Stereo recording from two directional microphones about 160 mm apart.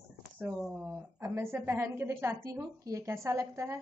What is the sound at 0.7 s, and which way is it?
A woman's voice, 15° right (ahead or behind).